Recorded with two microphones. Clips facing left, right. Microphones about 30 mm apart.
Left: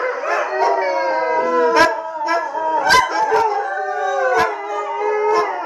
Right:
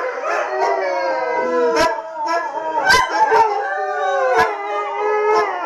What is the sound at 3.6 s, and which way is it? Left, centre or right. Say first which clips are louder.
Howl: right 1 dB; right.